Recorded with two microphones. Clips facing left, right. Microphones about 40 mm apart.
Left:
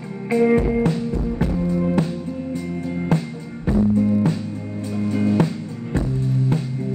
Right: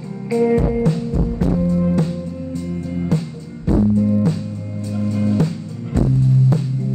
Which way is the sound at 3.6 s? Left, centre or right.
Left.